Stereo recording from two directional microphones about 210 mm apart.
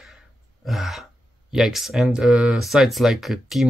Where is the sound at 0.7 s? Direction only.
Centre (ahead or behind).